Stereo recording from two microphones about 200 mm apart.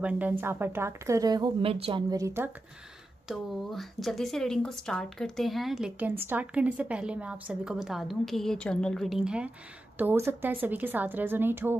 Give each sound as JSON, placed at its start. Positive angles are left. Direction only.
{"t": 0.0, "sound": "a woman's voice", "side_deg": -10}
{"t": 3.3, "sound": "a woman's voice", "side_deg": 0}